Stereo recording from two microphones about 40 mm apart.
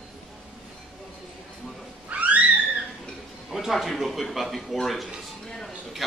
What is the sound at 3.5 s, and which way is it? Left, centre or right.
A man's voice, centre.